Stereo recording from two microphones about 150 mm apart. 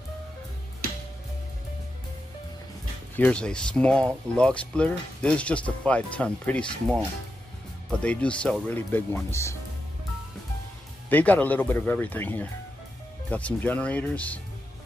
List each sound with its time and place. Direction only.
3.2 s speech: 5° left (ahead or behind)
8.0 s speech: 5° left (ahead or behind)
11.1 s speech: 10° left (ahead or behind)